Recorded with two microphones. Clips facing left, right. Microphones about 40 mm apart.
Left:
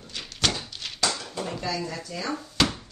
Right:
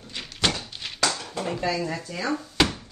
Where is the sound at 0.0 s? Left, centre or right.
Centre.